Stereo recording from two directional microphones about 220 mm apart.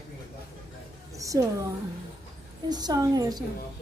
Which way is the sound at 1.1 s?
15° right (ahead or behind).